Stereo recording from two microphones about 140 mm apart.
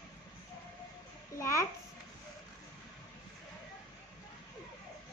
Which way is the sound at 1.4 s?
20° left (ahead or behind).